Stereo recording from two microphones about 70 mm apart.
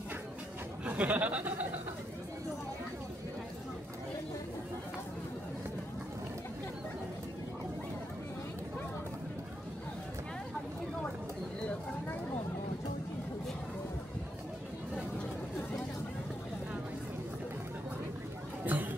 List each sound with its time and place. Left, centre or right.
0.8 s speech: right
18.7 s music: right